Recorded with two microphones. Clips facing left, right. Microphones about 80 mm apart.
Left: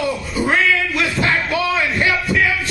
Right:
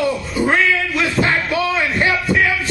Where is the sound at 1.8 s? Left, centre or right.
Right.